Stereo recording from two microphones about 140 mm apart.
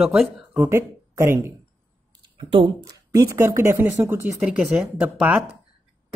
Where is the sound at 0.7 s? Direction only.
20° right (ahead or behind).